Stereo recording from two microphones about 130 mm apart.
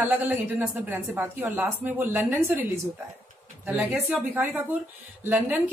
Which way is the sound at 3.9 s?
5° right (ahead or behind).